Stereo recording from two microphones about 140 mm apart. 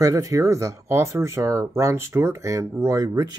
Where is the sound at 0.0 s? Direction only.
25° right (ahead or behind).